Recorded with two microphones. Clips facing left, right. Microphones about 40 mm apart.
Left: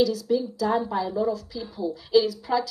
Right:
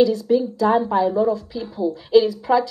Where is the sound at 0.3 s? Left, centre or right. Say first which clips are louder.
Right 6 dB; right.